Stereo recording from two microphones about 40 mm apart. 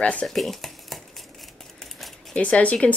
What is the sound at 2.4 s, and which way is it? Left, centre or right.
Speech, left.